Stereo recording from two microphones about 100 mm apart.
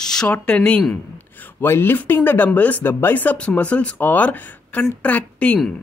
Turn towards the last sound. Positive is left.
turn(degrees=15)  # may be behind; listen again after turning